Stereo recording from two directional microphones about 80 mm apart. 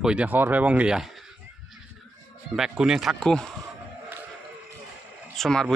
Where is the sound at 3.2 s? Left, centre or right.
Centre.